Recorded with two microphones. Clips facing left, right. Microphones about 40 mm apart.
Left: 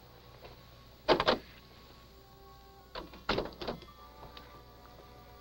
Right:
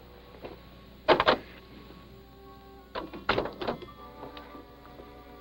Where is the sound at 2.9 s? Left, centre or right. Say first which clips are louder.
Right 6 dB; right.